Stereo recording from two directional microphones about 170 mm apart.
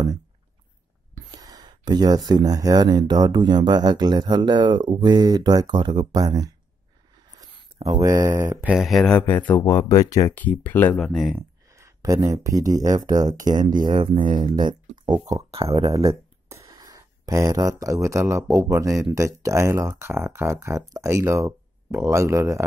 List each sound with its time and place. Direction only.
1.3 s speech: 25° right (ahead or behind)
8.7 s speech: centre (ahead or behind)
11.3 s speech: 15° right (ahead or behind)
15.3 s speech: 35° right (ahead or behind)
16.1 s speech: 15° right (ahead or behind)